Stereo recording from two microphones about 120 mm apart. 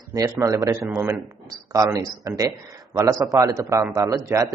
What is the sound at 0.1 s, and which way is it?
A man's voice, 30° right (ahead or behind).